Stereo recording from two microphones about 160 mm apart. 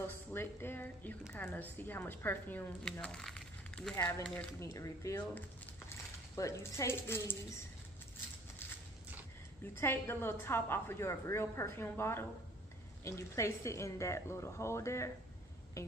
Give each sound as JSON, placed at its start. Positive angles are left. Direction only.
{"t": 0.0, "sound": "a woman's voice", "side_deg": 15}
{"t": 4.4, "sound": "speech", "side_deg": 15}
{"t": 9.8, "sound": "a woman's voice", "side_deg": 15}